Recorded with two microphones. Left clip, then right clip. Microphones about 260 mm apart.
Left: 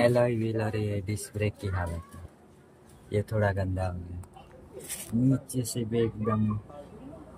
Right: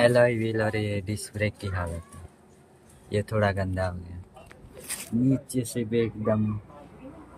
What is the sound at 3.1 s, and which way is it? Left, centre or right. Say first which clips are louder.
Speech: right 3 dB; centre.